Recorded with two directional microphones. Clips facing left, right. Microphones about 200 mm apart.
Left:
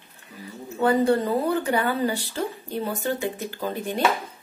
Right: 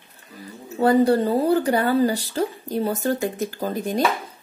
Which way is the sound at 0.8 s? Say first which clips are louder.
Right 3 dB; 35° right (ahead or behind).